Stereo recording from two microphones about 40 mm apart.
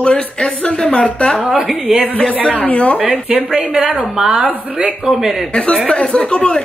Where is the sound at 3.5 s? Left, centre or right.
Centre.